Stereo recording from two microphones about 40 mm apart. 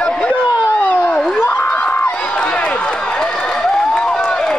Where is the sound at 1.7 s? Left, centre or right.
Left.